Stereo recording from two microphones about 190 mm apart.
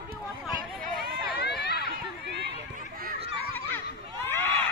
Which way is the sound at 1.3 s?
60° left (ahead or behind).